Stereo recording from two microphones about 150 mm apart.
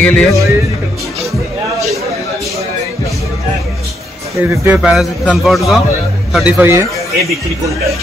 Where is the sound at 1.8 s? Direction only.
20° right (ahead or behind).